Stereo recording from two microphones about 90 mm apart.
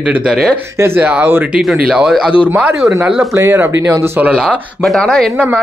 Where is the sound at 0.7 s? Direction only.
25° right (ahead or behind).